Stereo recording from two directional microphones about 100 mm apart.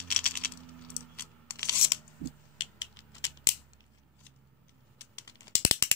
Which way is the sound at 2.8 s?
35° left (ahead or behind).